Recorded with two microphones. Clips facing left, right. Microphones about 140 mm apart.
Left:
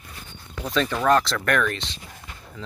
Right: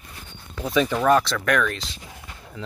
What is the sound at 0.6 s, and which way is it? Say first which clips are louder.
Speech: right 2 dB; 10° right (ahead or behind).